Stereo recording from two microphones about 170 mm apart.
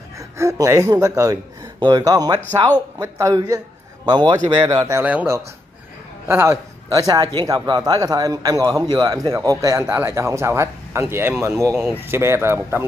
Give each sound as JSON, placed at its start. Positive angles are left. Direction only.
{"t": 0.2, "sound": "a man's voice", "side_deg": -20}